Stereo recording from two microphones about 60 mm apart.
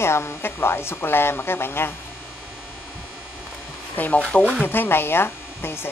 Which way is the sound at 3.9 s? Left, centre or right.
Left.